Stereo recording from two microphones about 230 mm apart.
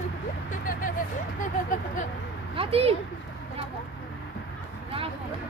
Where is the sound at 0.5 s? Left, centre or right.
Left.